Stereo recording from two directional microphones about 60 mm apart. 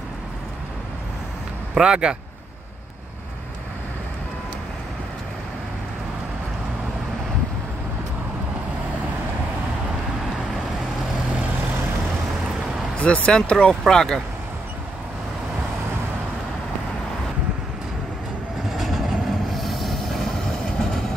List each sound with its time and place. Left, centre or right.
1.8 s speech: centre
13.0 s speech: centre
18.7 s train: centre